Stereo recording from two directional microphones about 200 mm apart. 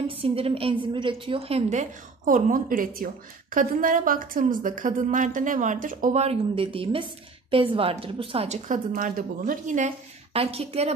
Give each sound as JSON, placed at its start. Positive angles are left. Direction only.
{"t": 0.2, "sound": "a woman's voice", "side_deg": -30}
{"t": 10.3, "sound": "a woman's voice", "side_deg": -30}